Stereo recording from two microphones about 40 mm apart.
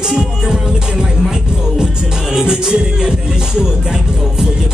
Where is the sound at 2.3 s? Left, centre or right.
Centre.